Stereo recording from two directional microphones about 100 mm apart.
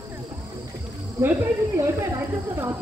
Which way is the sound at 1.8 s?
25° right (ahead or behind).